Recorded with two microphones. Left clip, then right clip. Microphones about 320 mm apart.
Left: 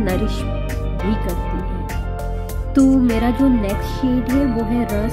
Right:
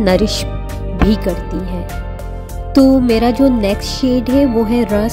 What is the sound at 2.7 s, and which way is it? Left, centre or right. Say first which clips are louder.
Music: right 5 dB; centre.